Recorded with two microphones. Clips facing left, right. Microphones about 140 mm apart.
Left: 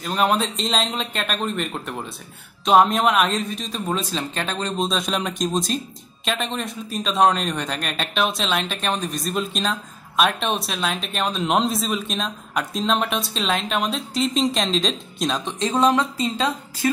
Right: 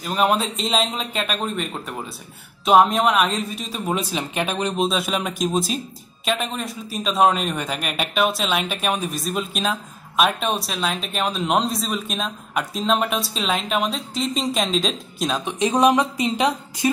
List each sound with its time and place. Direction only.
0.0 s a man's voice: 5° right (ahead or behind)
15.6 s speech: 15° right (ahead or behind)